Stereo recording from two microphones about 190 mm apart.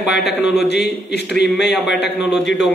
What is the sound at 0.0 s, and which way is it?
Speech, centre (ahead or behind).